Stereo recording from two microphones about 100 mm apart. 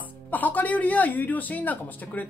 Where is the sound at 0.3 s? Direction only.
15° left (ahead or behind).